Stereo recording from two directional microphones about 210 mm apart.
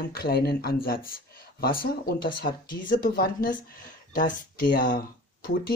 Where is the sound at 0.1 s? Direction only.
45° left (ahead or behind).